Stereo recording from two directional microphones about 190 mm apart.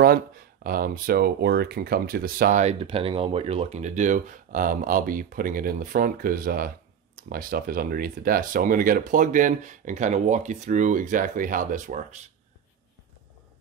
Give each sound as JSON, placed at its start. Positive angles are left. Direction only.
{"t": 0.0, "sound": "speech", "side_deg": -50}